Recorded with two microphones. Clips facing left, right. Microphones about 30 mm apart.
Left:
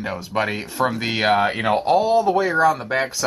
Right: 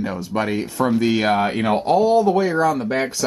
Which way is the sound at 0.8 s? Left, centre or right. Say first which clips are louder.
Right 3 dB; left.